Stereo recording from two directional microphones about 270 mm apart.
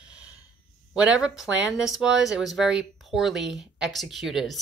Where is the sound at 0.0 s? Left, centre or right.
Centre.